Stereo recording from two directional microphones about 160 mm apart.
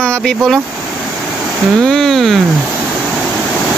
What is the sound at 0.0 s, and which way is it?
Speech, 5° left (ahead or behind).